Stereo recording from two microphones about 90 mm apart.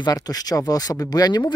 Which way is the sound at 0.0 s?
45° left (ahead or behind).